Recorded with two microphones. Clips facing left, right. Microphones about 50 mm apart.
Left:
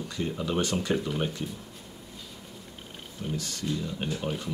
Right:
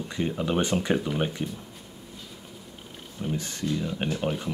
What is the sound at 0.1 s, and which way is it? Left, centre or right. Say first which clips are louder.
Speech: right 4 dB; right.